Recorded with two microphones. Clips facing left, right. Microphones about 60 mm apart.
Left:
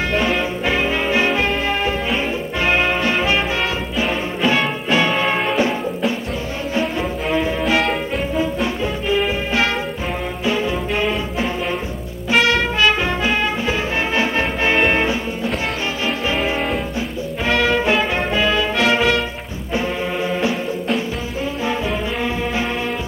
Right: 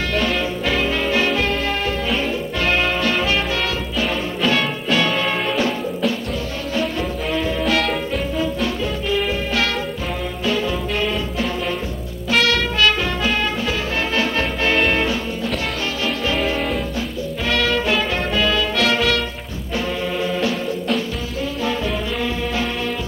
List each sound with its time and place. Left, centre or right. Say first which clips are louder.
0.1 s music: left 1 dB; centre
9.1 s music: left 2 dB; left
12.3 s music: left 2 dB; left
17.5 s music: left 3 dB; left
20.2 s music: left 2 dB; left